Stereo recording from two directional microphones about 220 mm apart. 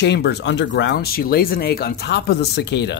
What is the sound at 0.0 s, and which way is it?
Speech, 50° left (ahead or behind).